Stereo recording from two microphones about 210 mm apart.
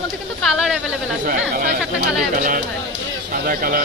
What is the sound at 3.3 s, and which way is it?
Speech, 40° right (ahead or behind).